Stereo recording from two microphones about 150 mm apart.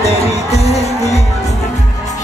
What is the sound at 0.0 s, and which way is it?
Music, 45° left (ahead or behind).